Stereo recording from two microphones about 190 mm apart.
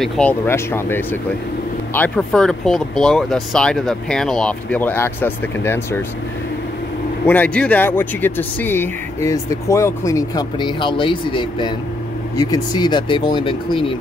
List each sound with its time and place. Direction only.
0.0 s speech: 5° left (ahead or behind)
7.2 s speech: 5° left (ahead or behind); by 13.9 s 25° left (ahead or behind)